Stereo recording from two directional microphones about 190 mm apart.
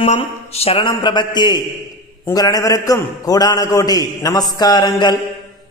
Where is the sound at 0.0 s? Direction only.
35° left (ahead or behind).